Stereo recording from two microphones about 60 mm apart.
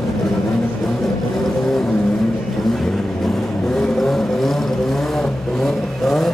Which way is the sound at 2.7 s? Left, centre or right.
Centre.